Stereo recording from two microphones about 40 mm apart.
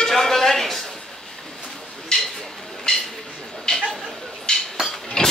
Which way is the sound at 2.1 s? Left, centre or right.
Centre.